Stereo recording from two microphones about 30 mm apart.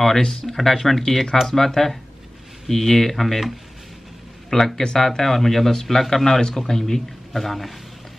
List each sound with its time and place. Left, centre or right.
0.0 s speech: centre
4.5 s speech: left; by 7.7 s centre